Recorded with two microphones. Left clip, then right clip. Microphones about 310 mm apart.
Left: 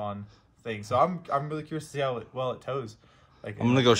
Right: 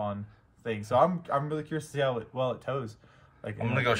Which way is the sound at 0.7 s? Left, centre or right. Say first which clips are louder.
Even; centre.